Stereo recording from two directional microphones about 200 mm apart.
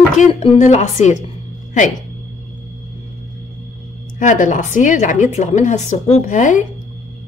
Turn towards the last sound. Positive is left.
turn(degrees=40)  # may be behind; listen again after turning